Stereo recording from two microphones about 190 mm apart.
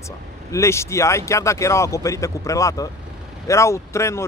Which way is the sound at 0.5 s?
15° left (ahead or behind).